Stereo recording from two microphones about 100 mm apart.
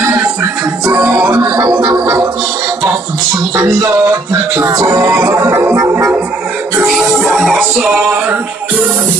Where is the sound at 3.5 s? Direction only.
30° right (ahead or behind).